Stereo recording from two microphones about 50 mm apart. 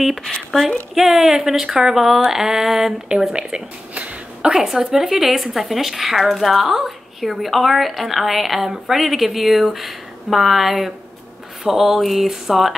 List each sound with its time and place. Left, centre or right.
0.5 s speech: centre
0.9 s speech: centre; by 4.1 s right
4.4 s a woman's voice: centre